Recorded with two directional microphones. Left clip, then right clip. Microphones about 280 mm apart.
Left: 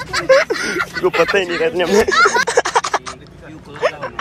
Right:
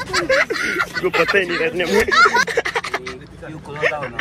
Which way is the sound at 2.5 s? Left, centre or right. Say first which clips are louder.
Left 5 dB; centre.